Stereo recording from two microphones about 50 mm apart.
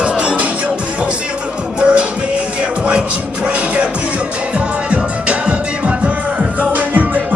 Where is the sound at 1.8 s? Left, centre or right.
Right.